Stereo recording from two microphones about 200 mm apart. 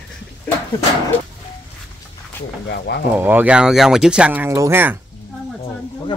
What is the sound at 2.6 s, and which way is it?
Speech, 55° left (ahead or behind).